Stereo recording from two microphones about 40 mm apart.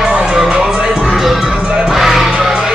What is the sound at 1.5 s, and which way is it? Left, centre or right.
Crowd, right.